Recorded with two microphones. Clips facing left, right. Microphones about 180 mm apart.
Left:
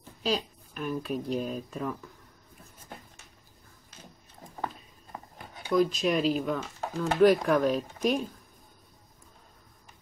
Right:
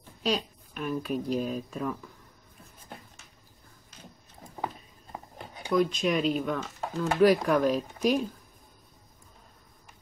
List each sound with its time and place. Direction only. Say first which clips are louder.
0.2 s speech: right 1 dB; centre (ahead or behind)
5.1 s a sound: right 1 dB; 15° right (ahead or behind)
5.7 s speech: even; centre (ahead or behind)